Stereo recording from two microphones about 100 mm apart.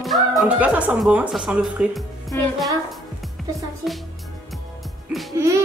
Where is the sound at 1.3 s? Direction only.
Centre (ahead or behind).